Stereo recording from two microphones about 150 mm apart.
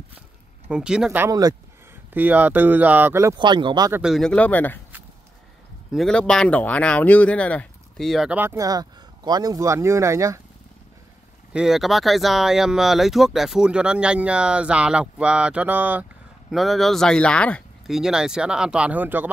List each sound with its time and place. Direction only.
0.7 s speech: 5° right (ahead or behind)
1.2 s speech: 25° right (ahead or behind)
2.1 s speech: 10° right (ahead or behind)
3.3 s speech: 30° right (ahead or behind)
4.0 s speech: centre (ahead or behind)
5.9 s speech: centre (ahead or behind)
8.4 s speech: 20° right (ahead or behind)
11.5 s speech: 5° right (ahead or behind)
17.8 s speech: 5° right (ahead or behind)